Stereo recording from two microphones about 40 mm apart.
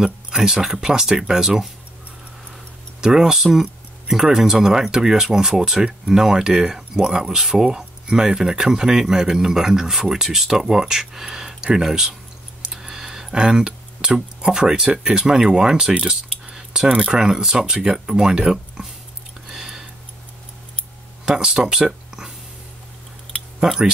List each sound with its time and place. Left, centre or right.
0.0 s speech: centre
3.0 s speech: centre
12.6 s tick: centre
14.4 s speech: centre
16.1 s a sound: centre
17.1 s speech: centre
19.4 s a sound: centre
21.3 s speech: centre
23.6 s speech: centre